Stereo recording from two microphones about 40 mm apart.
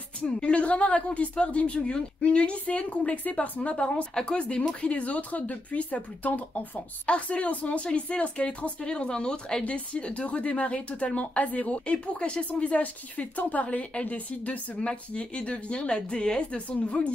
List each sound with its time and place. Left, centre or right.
0.4 s a woman's voice: left
9.7 s speech: left